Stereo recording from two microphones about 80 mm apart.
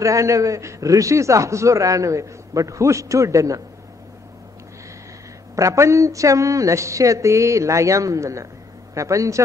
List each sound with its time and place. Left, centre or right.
0.0 s a man's voice: right
5.6 s a man's voice: right